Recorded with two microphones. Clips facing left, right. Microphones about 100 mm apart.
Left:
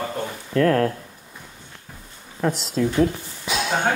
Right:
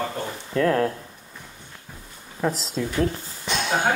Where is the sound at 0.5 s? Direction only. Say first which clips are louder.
Left 2 dB; 10° right (ahead or behind).